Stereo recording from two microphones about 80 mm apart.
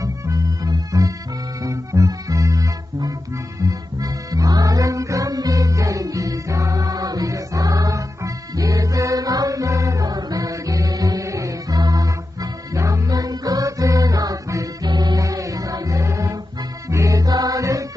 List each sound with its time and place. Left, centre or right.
0.0 s music: right
14.9 s music: right
15.1 s music: right